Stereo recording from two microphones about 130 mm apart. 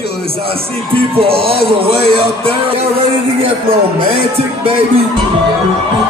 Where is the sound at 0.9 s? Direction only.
45° right (ahead or behind).